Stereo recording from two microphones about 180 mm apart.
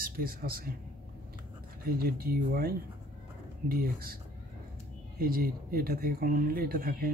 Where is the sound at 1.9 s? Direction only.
55° right (ahead or behind).